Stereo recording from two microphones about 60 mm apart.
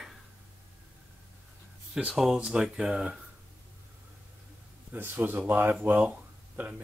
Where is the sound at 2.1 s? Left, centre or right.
Centre.